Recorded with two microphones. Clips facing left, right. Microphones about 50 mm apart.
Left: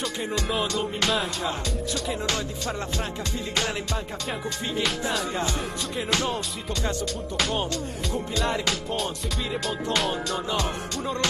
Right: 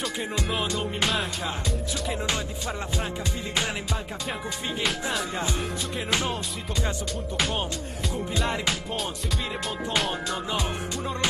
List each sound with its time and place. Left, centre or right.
0.3 s music: centre
2.2 s music: centre
4.8 s music: centre
7.3 s music: centre